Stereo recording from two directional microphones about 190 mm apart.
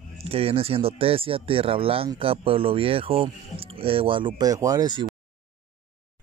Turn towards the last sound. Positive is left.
turn(degrees=-25)  # may be behind; listen again after turning